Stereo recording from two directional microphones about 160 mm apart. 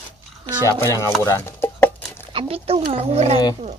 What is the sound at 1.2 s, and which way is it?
Bird, 15° left (ahead or behind).